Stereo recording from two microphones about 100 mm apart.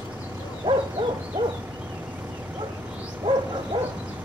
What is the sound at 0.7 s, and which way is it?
Hoot, 55° right (ahead or behind).